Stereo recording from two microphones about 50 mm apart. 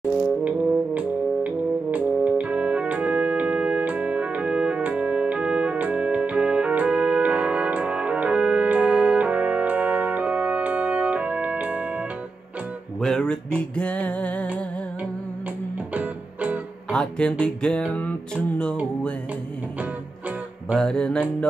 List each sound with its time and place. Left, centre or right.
0.4 s brass instrument: right
13.6 s music: left
15.9 s music: right
16.9 s music: centre
20.7 s music: centre